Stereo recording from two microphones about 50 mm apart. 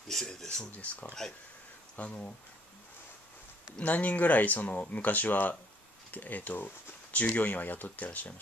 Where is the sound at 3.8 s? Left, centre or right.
Left.